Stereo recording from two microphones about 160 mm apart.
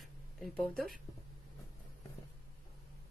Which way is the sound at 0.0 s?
5° left (ahead or behind).